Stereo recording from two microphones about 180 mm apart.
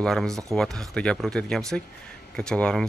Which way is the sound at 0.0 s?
5° left (ahead or behind).